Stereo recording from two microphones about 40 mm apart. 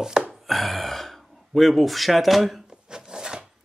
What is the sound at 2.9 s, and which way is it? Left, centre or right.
Filing, centre.